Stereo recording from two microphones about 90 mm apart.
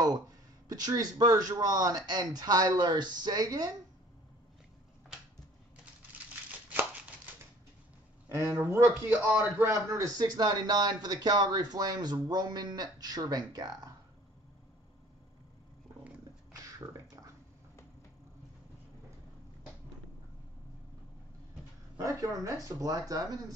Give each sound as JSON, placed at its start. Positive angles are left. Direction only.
{"t": 0.7, "sound": "speech", "side_deg": -45}
{"t": 8.3, "sound": "a man's voice", "side_deg": -30}
{"t": 9.6, "sound": "speech", "side_deg": -35}
{"t": 16.7, "sound": "a sound", "side_deg": -40}
{"t": 21.9, "sound": "speech", "side_deg": -40}